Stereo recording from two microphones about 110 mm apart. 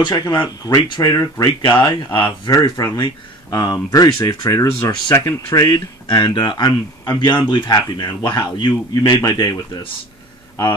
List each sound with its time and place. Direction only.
0.1 s speech: 35° left (ahead or behind)